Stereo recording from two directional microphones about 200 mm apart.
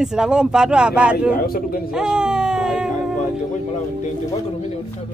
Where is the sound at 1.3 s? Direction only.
45° left (ahead or behind).